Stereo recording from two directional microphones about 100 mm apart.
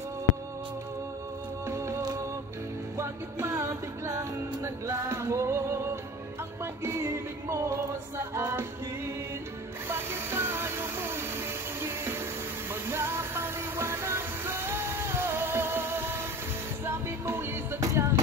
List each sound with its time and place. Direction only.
1.7 s music: 30° right (ahead or behind)
9.8 s music: 25° right (ahead or behind)